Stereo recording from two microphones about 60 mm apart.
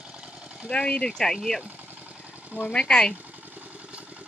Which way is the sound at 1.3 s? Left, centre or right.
Centre.